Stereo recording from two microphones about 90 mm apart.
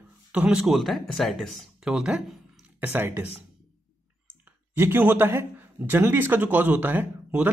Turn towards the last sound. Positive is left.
turn(degrees=-20)  # may be behind; listen again after turning